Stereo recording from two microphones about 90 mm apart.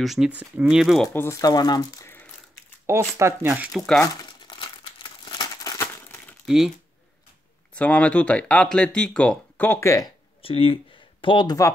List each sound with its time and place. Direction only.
0.0 s speech: centre (ahead or behind)
0.3 s speech: 15° right (ahead or behind)
0.7 s speech: centre (ahead or behind)
1.3 s speech: 45° left (ahead or behind)
2.9 s speech: 30° right (ahead or behind)
3.7 s speech: 5° left (ahead or behind)
4.2 s crumpling: 60° left (ahead or behind)
5.8 s crumpling: 25° left (ahead or behind)
6.4 s speech: 5° right (ahead or behind)
7.7 s speech: 15° left (ahead or behind); by 10.0 s 30° left (ahead or behind)
10.4 s speech: 90° left; by 11.4 s 70° left (ahead or behind)
11.4 s speech: 40° left (ahead or behind)